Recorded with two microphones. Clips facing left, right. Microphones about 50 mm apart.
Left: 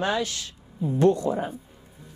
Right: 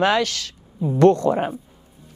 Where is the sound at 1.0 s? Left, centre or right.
Right.